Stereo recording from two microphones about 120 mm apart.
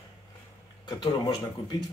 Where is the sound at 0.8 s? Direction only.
35° left (ahead or behind).